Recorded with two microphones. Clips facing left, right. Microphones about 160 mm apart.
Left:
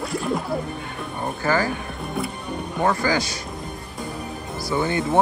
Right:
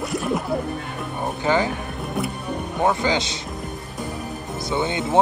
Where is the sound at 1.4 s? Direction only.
20° right (ahead or behind).